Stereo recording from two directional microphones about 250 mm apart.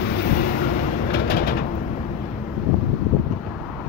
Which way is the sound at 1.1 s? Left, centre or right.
Left.